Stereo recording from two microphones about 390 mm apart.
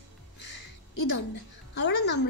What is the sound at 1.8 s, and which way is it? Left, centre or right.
Speech, left.